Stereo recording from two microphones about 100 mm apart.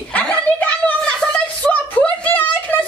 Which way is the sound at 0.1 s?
15° left (ahead or behind).